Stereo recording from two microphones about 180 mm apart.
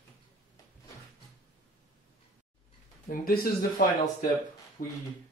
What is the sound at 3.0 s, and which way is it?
Speech, 55° left (ahead or behind).